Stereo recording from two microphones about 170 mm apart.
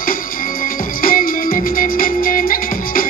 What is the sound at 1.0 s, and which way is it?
Music, 55° left (ahead or behind).